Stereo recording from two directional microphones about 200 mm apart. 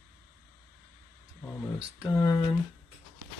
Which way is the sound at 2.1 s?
15° left (ahead or behind).